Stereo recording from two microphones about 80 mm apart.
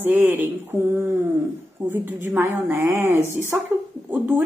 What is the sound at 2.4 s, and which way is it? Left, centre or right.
Speech, right.